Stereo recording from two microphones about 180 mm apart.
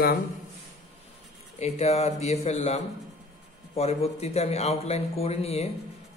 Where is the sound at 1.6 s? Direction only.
35° left (ahead or behind).